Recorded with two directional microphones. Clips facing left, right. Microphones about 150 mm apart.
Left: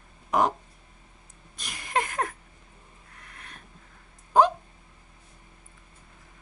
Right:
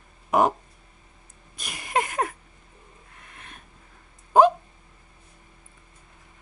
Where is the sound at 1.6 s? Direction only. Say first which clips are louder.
Right 2 dB; 15° right (ahead or behind).